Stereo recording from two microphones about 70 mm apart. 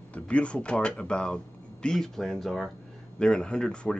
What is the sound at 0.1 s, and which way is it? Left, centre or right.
Speech, centre.